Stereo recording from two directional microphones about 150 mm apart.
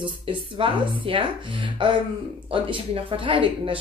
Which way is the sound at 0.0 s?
35° right (ahead or behind).